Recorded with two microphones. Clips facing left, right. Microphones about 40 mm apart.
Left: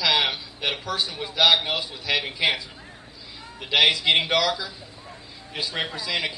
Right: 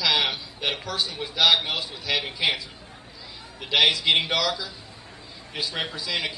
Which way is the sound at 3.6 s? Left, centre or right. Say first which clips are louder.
Left 1 dB; centre.